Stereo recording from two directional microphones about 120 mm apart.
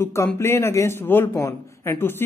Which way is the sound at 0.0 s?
25° left (ahead or behind).